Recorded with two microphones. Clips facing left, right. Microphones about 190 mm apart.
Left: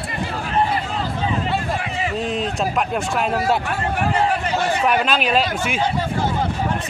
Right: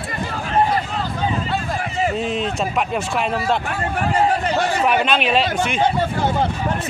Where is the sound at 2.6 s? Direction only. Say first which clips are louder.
Even; centre (ahead or behind).